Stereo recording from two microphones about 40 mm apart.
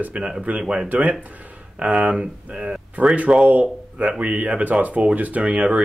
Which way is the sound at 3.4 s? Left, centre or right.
Right.